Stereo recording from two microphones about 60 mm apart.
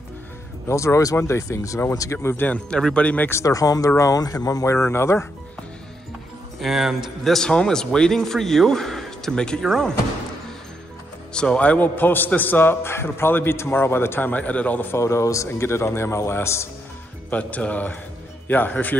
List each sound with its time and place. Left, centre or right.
0.7 s speech: left
2.2 s a man's voice: left
2.5 s speech: centre
3.3 s speech: left
4.6 s speech: left
6.6 s speech: centre
7.3 s speech: centre
11.3 s a man's voice: centre; by 14.3 s left
14.3 s speech: left
15.0 s speech: left
17.3 s speech: left